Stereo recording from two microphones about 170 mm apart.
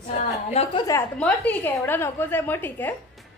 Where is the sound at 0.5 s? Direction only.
40° left (ahead or behind).